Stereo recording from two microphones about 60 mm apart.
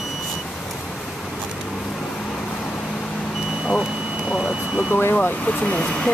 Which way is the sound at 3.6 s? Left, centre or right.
Centre.